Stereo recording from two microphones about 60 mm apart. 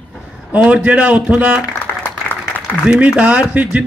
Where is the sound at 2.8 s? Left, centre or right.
Centre.